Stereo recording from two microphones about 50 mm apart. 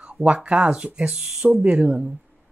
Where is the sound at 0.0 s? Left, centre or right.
Right.